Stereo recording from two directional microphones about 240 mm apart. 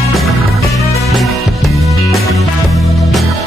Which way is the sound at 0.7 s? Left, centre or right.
Centre.